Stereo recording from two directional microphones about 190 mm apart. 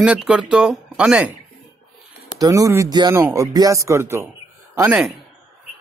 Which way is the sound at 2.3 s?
20° right (ahead or behind).